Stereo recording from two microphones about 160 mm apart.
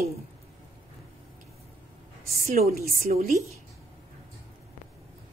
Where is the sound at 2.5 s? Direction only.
65° right (ahead or behind).